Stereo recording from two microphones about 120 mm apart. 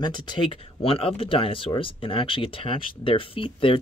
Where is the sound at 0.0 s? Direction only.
40° left (ahead or behind).